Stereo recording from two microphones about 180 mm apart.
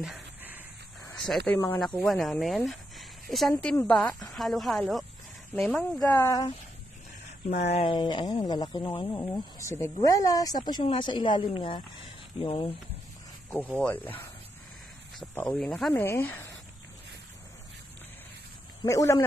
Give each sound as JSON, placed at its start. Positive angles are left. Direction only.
{"t": 0.0, "sound": "a sound", "side_deg": -5}
{"t": 1.1, "sound": "a woman's voice", "side_deg": 0}
{"t": 7.4, "sound": "speech", "side_deg": 35}
{"t": 9.2, "sound": "speech", "side_deg": 15}
{"t": 13.7, "sound": "speech", "side_deg": 10}
{"t": 15.3, "sound": "a woman's voice", "side_deg": 5}
{"t": 18.9, "sound": "speech", "side_deg": 15}